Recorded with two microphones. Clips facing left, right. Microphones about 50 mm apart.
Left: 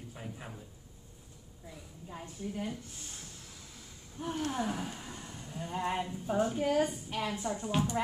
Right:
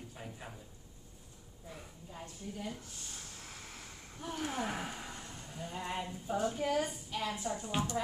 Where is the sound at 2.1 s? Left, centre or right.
Left.